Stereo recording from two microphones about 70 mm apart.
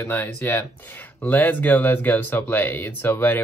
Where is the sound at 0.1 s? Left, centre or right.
Left.